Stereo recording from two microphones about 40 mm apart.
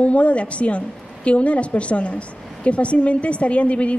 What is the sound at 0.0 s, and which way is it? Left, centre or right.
A woman's voice, left.